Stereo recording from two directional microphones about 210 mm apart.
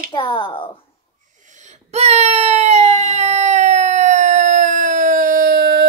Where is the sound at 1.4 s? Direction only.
35° right (ahead or behind).